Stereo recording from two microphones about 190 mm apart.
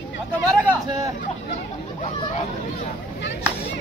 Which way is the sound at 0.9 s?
15° right (ahead or behind).